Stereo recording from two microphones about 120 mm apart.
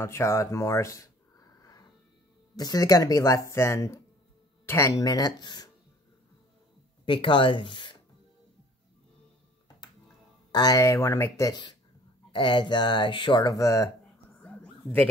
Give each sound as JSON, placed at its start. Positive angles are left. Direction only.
{"t": 0.0, "sound": "a sound", "side_deg": 25}
{"t": 2.5, "sound": "speech", "side_deg": 30}
{"t": 7.1, "sound": "speech", "side_deg": 40}
{"t": 10.5, "sound": "speech", "side_deg": 35}
{"t": 12.3, "sound": "speech", "side_deg": 40}
{"t": 14.4, "sound": "a sound", "side_deg": 10}